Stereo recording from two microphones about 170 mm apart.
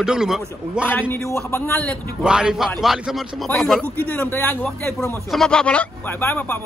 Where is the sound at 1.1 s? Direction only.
15° left (ahead or behind).